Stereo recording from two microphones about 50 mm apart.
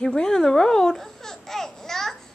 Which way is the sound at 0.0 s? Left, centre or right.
Centre.